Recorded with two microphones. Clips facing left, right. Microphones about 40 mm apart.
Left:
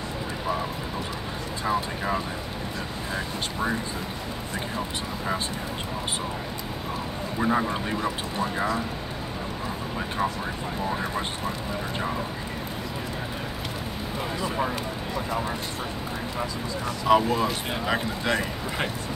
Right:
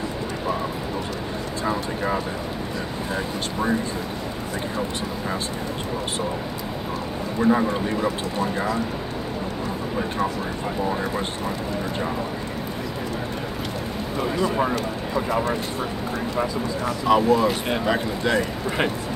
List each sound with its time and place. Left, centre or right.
7.3 s speech: centre
17.1 s speech: centre